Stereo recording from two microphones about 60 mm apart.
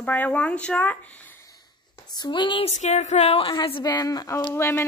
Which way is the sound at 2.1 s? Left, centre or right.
Left.